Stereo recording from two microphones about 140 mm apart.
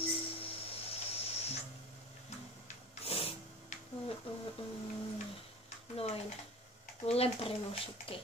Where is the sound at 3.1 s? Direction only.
45° left (ahead or behind).